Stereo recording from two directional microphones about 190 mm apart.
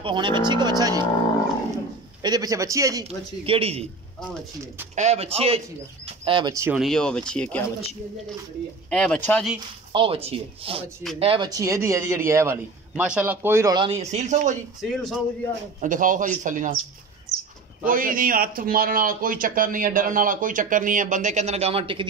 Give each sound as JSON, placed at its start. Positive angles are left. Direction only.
{"t": 0.0, "sound": "speech", "side_deg": -25}
{"t": 2.2, "sound": "speech", "side_deg": -20}
{"t": 3.1, "sound": "speech", "side_deg": -30}
{"t": 4.9, "sound": "speech", "side_deg": -35}
{"t": 6.8, "sound": "speech", "side_deg": 5}
{"t": 8.9, "sound": "speech", "side_deg": 5}
{"t": 9.9, "sound": "a man's voice", "side_deg": -30}
{"t": 14.8, "sound": "speech", "side_deg": 0}
{"t": 15.8, "sound": "a man's voice", "side_deg": -45}
{"t": 17.8, "sound": "a man's voice", "side_deg": -45}